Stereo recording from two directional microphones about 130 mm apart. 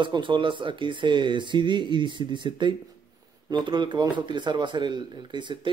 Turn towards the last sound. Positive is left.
turn(degrees=-35)  # may be behind; listen again after turning